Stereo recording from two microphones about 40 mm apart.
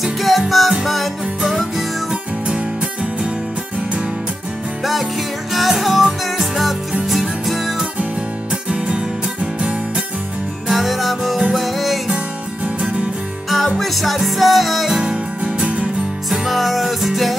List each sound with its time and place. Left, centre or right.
0.0 s music: centre
2.4 s music: right
5.5 s music: centre
8.7 s music: right
10.7 s music: centre
13.5 s music: centre
15.0 s music: right
16.3 s music: centre